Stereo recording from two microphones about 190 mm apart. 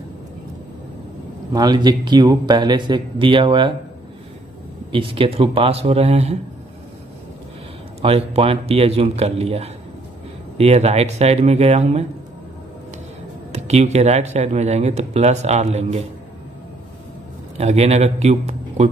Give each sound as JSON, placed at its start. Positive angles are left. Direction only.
{"t": 1.5, "sound": "a man's voice", "side_deg": -20}
{"t": 4.9, "sound": "speech", "side_deg": -30}
{"t": 8.0, "sound": "speech", "side_deg": -35}
{"t": 13.5, "sound": "speech", "side_deg": -35}
{"t": 17.6, "sound": "a man's voice", "side_deg": -35}